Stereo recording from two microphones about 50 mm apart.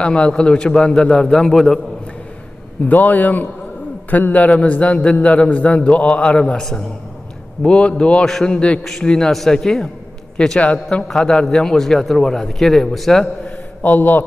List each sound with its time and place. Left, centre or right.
0.0 s a man's voice: left
2.9 s a man's voice: left; by 6.6 s centre
7.6 s a man's voice: left
10.6 s a man's voice: left
11.1 s a man's voice: centre
13.8 s a man's voice: left